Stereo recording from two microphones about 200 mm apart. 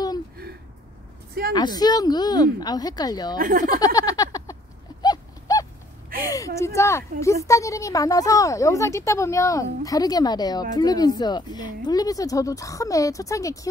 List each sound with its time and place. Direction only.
1.5 s speech: 20° left (ahead or behind)
3.3 s speech: 45° right (ahead or behind)
3.7 s a sound: 20° left (ahead or behind)
5.0 s horse: 20° left (ahead or behind)
6.2 s a woman's voice: 15° left (ahead or behind)